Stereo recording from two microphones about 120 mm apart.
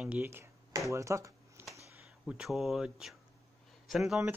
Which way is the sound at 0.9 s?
25° right (ahead or behind).